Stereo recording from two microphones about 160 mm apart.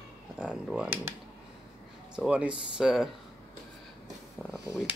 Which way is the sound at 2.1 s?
10° right (ahead or behind).